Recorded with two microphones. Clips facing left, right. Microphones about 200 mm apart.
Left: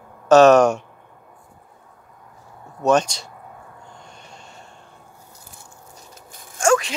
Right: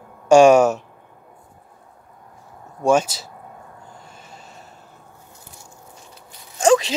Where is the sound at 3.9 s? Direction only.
5° right (ahead or behind).